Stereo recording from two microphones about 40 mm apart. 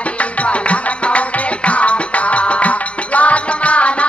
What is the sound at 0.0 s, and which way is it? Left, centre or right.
Music, left.